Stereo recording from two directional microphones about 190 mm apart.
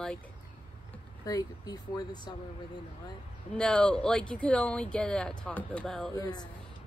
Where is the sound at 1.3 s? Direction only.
20° left (ahead or behind).